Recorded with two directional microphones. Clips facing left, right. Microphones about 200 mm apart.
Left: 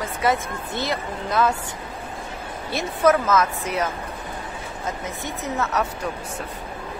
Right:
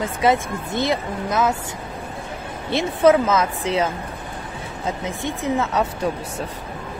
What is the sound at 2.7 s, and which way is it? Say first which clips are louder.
Speech: right 4 dB; 25° right (ahead or behind).